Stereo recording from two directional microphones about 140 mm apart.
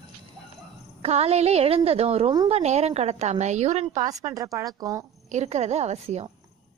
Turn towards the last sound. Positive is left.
turn(degrees=-50)  # may be behind; listen again after turning